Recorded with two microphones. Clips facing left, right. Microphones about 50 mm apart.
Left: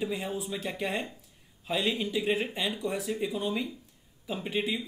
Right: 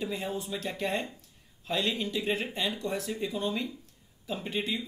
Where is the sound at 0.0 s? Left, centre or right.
Centre.